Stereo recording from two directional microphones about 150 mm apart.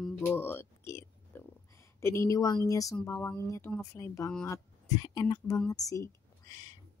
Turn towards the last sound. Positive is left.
turn(degrees=25)  # may be behind; listen again after turning